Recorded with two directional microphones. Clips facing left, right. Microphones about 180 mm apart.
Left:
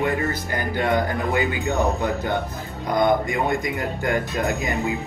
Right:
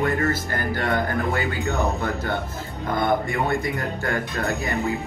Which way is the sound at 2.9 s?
15° left (ahead or behind).